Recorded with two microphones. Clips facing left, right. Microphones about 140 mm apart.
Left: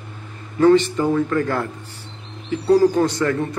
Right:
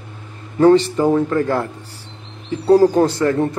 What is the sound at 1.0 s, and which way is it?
Speech, 20° right (ahead or behind).